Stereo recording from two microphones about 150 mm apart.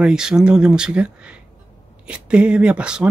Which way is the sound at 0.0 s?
5° right (ahead or behind).